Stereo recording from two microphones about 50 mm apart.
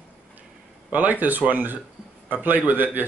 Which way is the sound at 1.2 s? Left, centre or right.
Right.